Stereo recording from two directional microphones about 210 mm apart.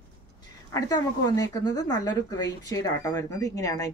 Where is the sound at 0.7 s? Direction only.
15° left (ahead or behind).